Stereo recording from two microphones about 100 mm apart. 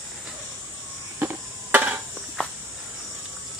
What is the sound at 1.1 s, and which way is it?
Cricket, 20° right (ahead or behind).